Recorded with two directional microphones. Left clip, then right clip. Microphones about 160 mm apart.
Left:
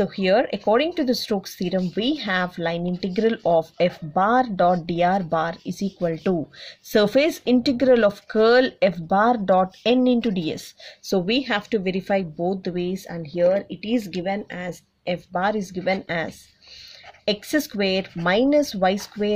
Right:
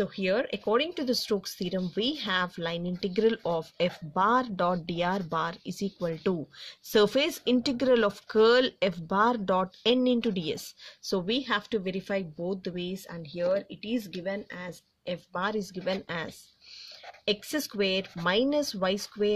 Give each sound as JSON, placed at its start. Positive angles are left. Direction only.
{"t": 0.0, "sound": "speech", "side_deg": -30}
{"t": 11.1, "sound": "speech", "side_deg": -25}